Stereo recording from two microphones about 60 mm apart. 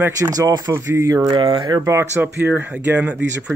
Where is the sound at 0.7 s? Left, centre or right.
Right.